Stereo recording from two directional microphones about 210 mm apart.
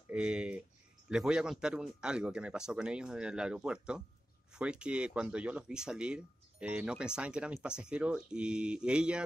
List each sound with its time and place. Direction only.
0.1 s speech: 5° right (ahead or behind)